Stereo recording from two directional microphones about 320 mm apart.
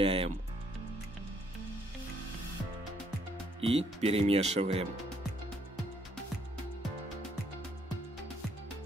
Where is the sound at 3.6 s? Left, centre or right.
Centre.